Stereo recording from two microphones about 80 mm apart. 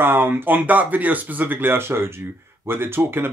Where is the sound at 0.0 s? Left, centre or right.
Right.